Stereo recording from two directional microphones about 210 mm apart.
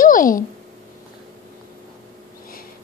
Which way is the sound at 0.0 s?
40° left (ahead or behind).